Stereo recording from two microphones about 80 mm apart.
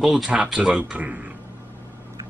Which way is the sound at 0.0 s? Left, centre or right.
Centre.